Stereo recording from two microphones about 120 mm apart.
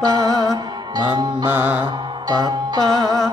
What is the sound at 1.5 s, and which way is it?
Music, 15° right (ahead or behind).